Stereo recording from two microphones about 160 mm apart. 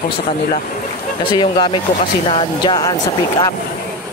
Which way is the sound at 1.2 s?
30° left (ahead or behind).